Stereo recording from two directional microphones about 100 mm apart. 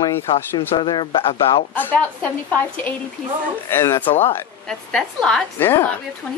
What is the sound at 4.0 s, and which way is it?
Speech, 85° left.